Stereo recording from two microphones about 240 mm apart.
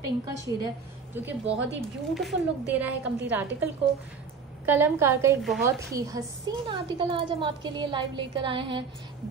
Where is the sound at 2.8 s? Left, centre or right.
Centre.